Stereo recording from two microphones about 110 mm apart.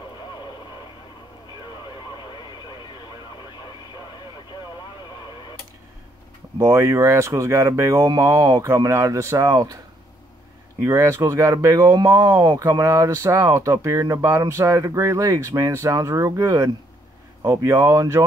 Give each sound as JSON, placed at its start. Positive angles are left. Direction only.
{"t": 6.6, "sound": "speech", "side_deg": -25}
{"t": 10.8, "sound": "speech", "side_deg": -30}